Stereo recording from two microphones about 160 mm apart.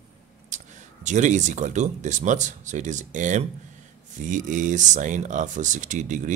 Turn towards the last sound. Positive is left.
turn(degrees=-50)  # may be behind; listen again after turning